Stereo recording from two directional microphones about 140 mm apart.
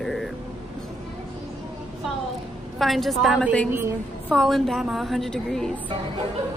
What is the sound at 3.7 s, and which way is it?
Speech, 15° right (ahead or behind).